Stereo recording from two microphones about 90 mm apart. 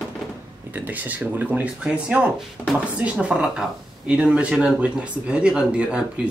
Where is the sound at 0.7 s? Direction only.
20° right (ahead or behind).